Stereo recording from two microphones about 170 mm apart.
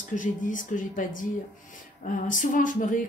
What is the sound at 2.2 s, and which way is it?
Speech, 50° left (ahead or behind).